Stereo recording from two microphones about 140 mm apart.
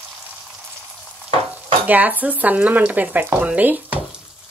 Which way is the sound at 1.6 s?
10° right (ahead or behind).